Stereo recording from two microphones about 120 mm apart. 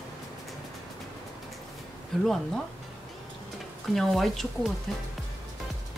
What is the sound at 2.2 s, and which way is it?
Speech, 5° left (ahead or behind).